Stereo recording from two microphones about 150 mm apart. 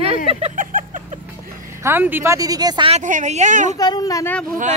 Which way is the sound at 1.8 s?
15° right (ahead or behind).